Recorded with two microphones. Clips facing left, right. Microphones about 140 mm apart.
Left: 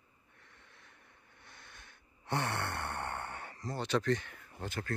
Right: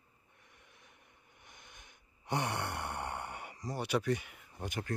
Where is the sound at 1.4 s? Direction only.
15° right (ahead or behind).